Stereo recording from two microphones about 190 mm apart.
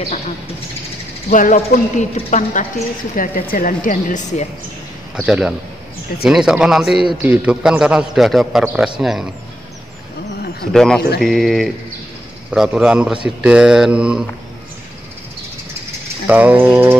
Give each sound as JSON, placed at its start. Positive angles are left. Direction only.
{"t": 1.3, "sound": "a woman's voice", "side_deg": 40}
{"t": 5.1, "sound": "a man's voice", "side_deg": -5}
{"t": 10.7, "sound": "a man's voice", "side_deg": 5}
{"t": 16.3, "sound": "a sound", "side_deg": -10}